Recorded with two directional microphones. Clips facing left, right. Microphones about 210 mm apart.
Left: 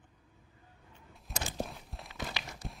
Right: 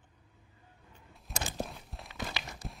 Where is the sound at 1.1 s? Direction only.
Centre (ahead or behind).